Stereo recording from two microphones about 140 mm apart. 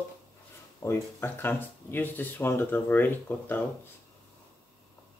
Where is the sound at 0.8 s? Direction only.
20° left (ahead or behind).